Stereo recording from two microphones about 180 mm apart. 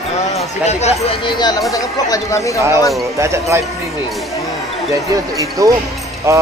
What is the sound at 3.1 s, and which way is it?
Speech, 15° right (ahead or behind).